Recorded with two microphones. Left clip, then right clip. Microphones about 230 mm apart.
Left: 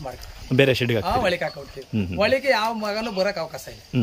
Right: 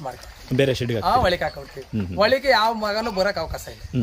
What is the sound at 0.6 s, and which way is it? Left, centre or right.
Speech, centre.